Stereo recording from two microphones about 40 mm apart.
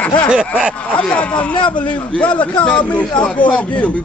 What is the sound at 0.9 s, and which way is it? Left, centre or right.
A man's voice, left.